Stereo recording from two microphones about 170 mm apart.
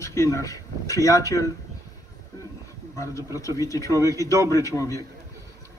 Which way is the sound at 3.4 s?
20° left (ahead or behind).